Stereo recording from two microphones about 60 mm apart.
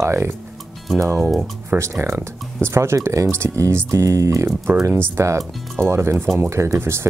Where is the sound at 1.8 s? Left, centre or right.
Right.